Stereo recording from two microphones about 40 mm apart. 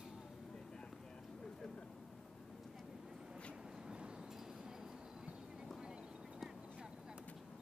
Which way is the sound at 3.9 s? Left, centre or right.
Centre.